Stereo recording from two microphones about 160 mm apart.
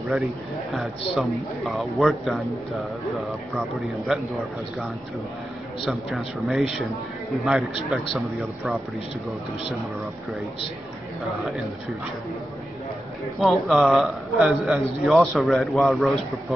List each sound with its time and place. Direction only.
1.7 s speech: centre (ahead or behind)
5.9 s speech: centre (ahead or behind)
13.4 s speech: centre (ahead or behind)